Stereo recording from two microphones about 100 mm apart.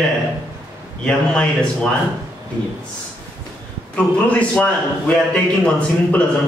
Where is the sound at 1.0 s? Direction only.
10° left (ahead or behind).